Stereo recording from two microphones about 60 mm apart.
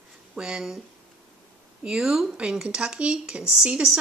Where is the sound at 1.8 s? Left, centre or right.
Centre.